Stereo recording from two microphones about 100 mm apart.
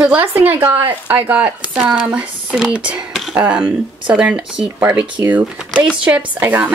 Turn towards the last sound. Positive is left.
turn(degrees=-15)  # may be behind; listen again after turning